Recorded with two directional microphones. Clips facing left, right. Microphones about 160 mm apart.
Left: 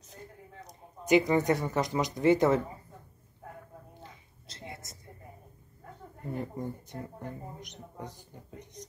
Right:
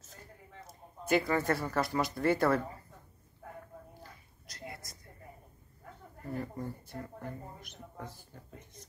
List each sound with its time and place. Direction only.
0.7 s speech: 15° left (ahead or behind)
4.0 s a sound: 25° left (ahead or behind)
6.2 s speech: 20° left (ahead or behind)